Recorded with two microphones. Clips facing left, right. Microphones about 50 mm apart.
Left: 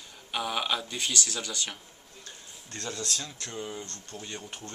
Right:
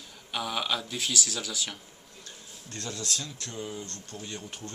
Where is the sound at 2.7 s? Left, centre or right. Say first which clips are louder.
Even; centre.